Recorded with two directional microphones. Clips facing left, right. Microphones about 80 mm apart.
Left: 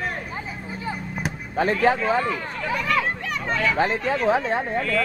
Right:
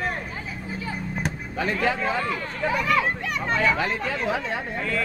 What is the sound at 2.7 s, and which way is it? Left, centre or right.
Speech, centre.